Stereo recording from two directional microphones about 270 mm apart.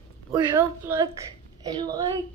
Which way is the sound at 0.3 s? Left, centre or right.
Centre.